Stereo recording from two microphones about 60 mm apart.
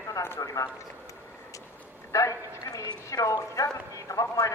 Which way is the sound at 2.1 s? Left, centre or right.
Left.